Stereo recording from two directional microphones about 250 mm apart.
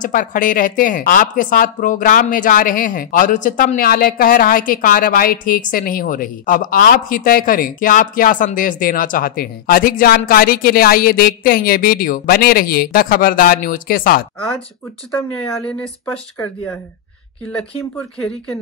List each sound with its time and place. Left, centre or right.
0.0 s a woman's voice: left
15.0 s speech: centre